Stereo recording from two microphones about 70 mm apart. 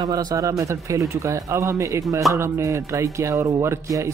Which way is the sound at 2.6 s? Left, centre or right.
Right.